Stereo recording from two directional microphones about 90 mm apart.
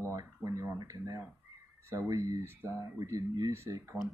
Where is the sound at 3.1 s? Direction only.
45° right (ahead or behind).